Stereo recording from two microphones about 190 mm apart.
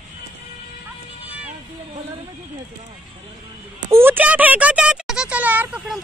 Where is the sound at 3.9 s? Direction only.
10° right (ahead or behind).